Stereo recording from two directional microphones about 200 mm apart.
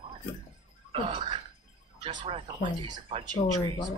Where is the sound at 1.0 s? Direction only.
25° right (ahead or behind).